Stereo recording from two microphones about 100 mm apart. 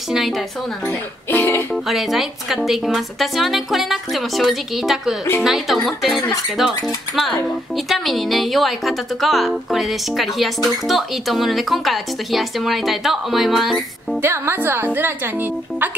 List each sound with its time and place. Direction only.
0.8 s speech: 20° left (ahead or behind)
1.9 s a woman's voice: 5° right (ahead or behind)
14.2 s a woman's voice: 25° right (ahead or behind)